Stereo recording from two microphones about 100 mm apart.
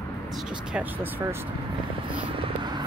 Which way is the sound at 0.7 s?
20° right (ahead or behind).